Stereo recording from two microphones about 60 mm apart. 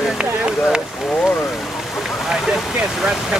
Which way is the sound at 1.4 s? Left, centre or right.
Centre.